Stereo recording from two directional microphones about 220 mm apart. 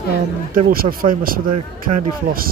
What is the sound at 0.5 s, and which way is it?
Speech, 40° right (ahead or behind).